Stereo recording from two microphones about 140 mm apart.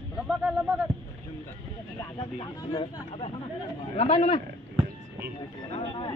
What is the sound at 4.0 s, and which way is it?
Speech, 45° left (ahead or behind).